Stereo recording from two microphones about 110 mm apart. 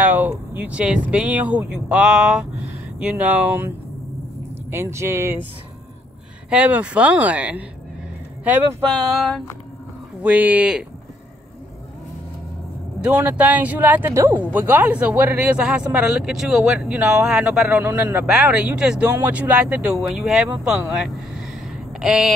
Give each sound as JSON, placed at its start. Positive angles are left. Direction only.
{"t": 0.0, "sound": "speech", "side_deg": -15}
{"t": 6.5, "sound": "speech", "side_deg": -10}
{"t": 10.2, "sound": "speech", "side_deg": -15}
{"t": 13.0, "sound": "speech", "side_deg": -15}